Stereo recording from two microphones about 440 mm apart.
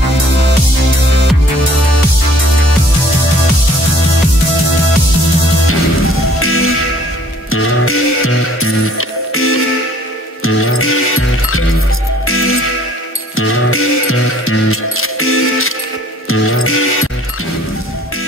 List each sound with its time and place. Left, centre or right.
6.4 s music: left